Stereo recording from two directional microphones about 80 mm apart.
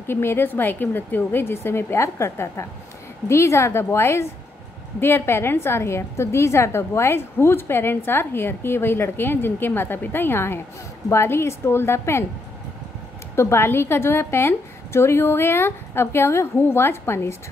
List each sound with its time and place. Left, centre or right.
0.0 s a woman's voice: left
13.4 s a woman's voice: left